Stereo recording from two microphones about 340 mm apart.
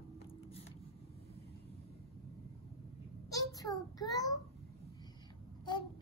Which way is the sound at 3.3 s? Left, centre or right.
Centre.